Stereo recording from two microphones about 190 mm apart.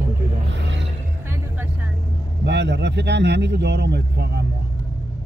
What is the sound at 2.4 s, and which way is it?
Speech, 65° right (ahead or behind).